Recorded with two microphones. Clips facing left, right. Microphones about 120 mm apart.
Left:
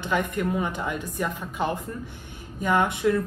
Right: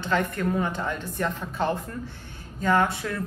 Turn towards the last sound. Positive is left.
turn(degrees=20)  # may be behind; listen again after turning